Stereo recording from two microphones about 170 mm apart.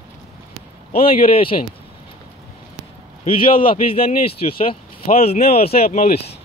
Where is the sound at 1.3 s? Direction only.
30° left (ahead or behind).